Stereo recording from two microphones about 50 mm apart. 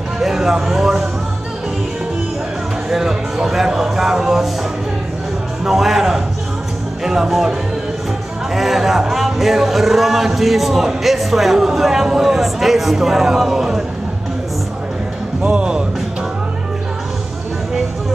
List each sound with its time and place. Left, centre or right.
0.2 s speech: centre
2.9 s a sound: centre
5.7 s music: centre
7.1 s speech: centre
8.5 s speech: centre
15.4 s speech: right